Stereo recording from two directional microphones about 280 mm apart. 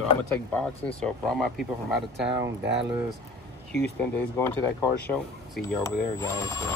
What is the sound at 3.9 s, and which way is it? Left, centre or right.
Speech, centre.